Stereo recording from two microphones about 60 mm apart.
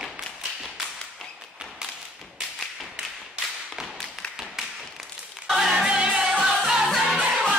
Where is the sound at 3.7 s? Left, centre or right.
Centre.